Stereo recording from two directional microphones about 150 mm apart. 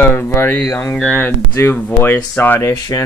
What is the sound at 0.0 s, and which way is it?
Speech, 15° left (ahead or behind).